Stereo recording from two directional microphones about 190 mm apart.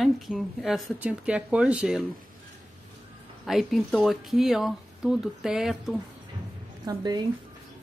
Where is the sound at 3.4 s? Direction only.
Centre (ahead or behind).